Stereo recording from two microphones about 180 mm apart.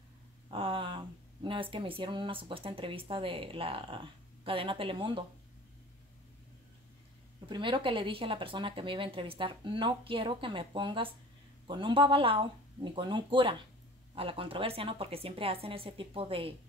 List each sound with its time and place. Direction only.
0.5 s speech: 30° right (ahead or behind)
7.4 s a woman's voice: 25° right (ahead or behind)